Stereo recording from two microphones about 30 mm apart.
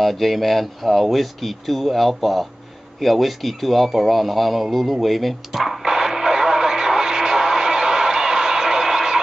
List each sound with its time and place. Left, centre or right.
0.0 s a man's voice: centre
5.9 s radio: centre